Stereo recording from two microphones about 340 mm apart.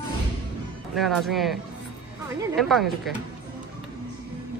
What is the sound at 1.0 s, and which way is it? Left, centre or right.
Speech, centre.